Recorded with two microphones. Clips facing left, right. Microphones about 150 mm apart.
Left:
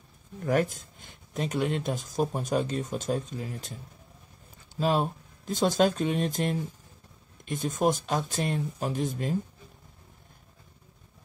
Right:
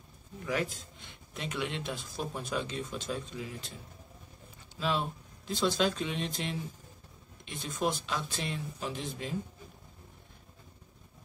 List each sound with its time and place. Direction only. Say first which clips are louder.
0.5 s speech: left 7 dB; 50° left (ahead or behind)
4.7 s speech: left 6 dB; 45° left (ahead or behind)